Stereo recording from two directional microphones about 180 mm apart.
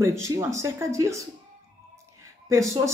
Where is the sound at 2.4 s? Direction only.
15° right (ahead or behind).